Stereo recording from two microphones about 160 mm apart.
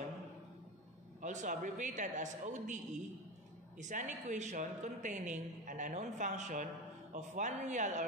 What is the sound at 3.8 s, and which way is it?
A man's voice, 50° right (ahead or behind).